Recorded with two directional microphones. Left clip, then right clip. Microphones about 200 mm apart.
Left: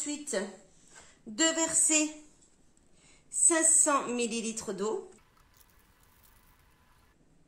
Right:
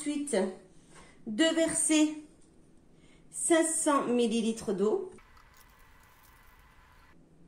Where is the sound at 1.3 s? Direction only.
35° left (ahead or behind).